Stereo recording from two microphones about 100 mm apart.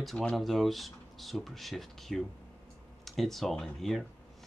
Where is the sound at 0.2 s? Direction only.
5° left (ahead or behind).